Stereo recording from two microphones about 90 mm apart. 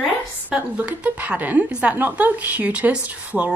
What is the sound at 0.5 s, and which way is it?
A woman's voice, 15° right (ahead or behind).